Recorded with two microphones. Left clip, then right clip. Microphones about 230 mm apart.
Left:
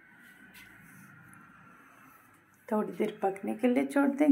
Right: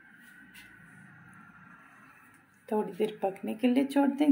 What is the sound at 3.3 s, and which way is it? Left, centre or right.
Speech, centre.